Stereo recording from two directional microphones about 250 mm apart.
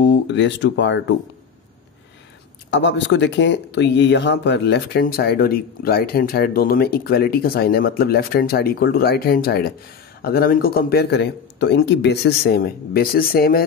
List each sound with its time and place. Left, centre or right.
0.0 s speech: left
2.7 s speech: left